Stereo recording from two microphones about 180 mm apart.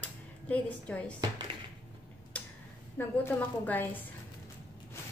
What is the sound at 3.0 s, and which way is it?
A woman's voice, 10° left (ahead or behind).